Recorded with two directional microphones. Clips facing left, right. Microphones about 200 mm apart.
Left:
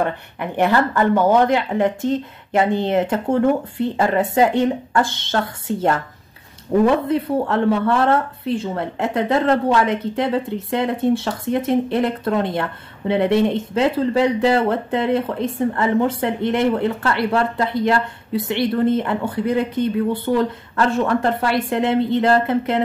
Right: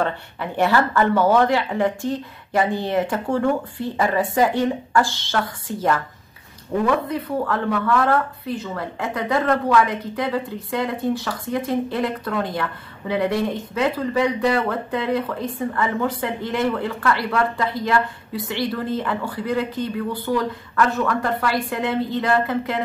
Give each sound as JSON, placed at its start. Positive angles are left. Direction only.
{"t": 0.0, "sound": "speech", "side_deg": 15}